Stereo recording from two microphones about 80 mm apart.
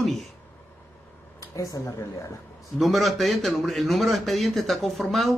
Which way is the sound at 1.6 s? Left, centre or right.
Left.